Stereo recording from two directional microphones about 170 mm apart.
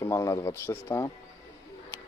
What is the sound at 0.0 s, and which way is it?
Speech, 15° left (ahead or behind).